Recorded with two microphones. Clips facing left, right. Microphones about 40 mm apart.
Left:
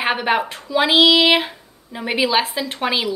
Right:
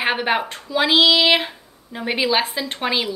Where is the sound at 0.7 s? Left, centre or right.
Centre.